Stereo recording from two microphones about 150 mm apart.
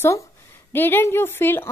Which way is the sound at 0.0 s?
20° left (ahead or behind).